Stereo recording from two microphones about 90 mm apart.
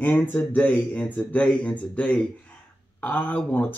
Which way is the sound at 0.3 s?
20° left (ahead or behind).